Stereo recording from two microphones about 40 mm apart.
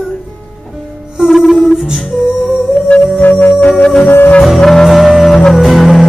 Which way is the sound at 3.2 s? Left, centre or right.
Left.